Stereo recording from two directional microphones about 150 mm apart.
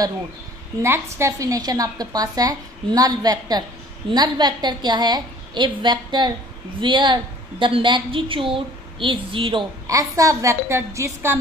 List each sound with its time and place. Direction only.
0.8 s a woman's voice: 15° right (ahead or behind); by 9.7 s 35° right (ahead or behind)
9.8 s a woman's voice: 20° right (ahead or behind)